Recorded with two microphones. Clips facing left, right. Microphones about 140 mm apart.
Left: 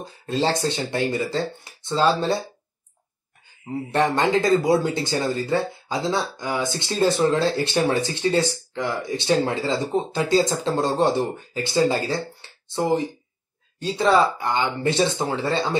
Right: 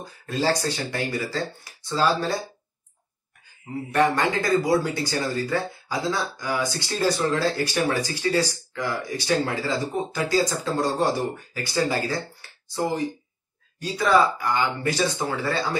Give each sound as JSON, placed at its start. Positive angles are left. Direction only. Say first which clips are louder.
{"t": 0.0, "sound": "speech", "louder": "left 2 dB", "side_deg": 25}
{"t": 3.9, "sound": "speech", "louder": "left 2 dB", "side_deg": 25}